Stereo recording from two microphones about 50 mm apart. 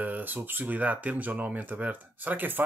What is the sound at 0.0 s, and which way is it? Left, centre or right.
Speech, right.